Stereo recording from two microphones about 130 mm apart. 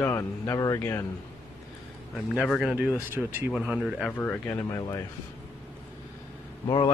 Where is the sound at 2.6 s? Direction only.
5° right (ahead or behind).